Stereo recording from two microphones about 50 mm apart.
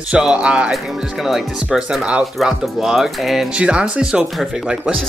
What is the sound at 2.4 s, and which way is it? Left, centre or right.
Speech, centre.